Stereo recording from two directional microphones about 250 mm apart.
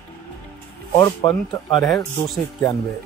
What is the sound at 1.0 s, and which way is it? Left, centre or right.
Speech, centre.